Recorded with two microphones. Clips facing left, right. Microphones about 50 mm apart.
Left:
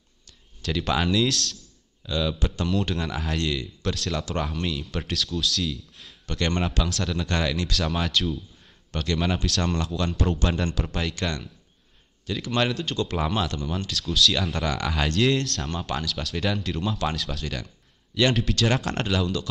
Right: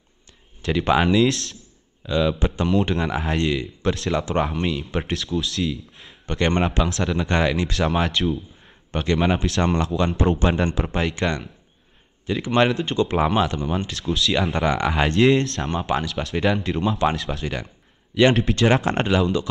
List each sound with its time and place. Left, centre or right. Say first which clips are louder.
0.6 s a man's voice: right 6 dB; right